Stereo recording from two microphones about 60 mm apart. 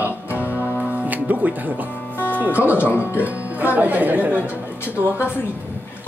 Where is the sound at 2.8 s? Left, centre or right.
Left.